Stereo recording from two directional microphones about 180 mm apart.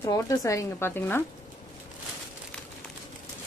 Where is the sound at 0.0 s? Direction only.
20° left (ahead or behind).